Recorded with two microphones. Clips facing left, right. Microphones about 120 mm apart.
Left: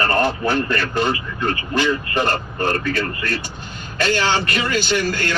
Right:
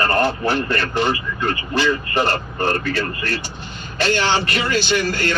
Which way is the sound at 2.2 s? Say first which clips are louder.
Right 1 dB; 15° right (ahead or behind).